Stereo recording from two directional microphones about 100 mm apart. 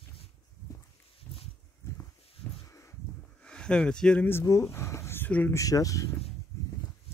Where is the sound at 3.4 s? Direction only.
10° left (ahead or behind).